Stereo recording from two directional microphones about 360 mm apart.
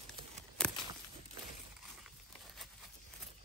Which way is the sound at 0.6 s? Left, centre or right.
Centre.